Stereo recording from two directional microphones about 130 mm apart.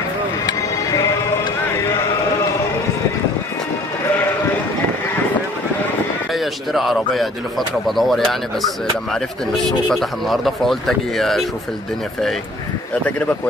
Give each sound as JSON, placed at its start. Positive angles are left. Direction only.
{"t": 0.5, "sound": "music", "side_deg": 30}
{"t": 6.3, "sound": "speech", "side_deg": 0}